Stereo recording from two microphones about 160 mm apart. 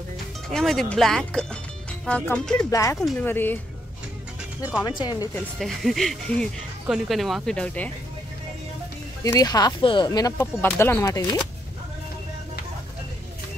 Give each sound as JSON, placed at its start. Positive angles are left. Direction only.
{"t": 0.5, "sound": "speech", "side_deg": 5}
{"t": 2.7, "sound": "speech", "side_deg": 20}
{"t": 3.0, "sound": "speech", "side_deg": 5}
{"t": 4.8, "sound": "speech", "side_deg": 25}
{"t": 5.3, "sound": "speech", "side_deg": 0}
{"t": 9.2, "sound": "speech", "side_deg": 20}
{"t": 10.3, "sound": "speech", "side_deg": 15}